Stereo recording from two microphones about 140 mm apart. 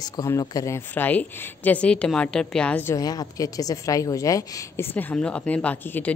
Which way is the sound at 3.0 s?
25° left (ahead or behind).